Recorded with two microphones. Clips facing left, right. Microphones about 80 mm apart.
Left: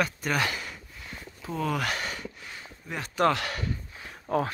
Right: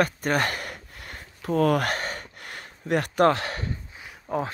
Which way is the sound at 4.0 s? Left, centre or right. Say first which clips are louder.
Left 1 dB; centre.